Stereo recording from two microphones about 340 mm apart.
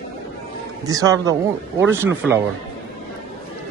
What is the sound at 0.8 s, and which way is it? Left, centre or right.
Speech, centre.